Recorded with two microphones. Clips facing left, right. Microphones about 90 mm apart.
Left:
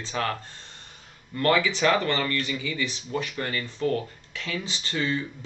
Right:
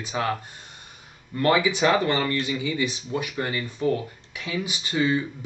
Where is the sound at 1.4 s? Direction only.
15° right (ahead or behind).